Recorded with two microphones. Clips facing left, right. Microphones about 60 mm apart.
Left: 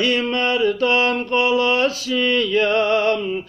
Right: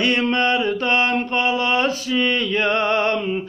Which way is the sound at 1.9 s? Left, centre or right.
Right.